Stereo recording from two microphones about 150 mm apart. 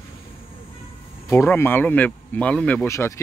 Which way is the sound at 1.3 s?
15° left (ahead or behind).